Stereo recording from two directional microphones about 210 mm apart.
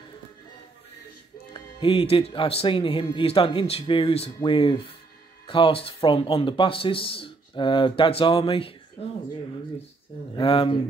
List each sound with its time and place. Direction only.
1.5 s speech: 25° left (ahead or behind)
10.3 s speech: 25° left (ahead or behind)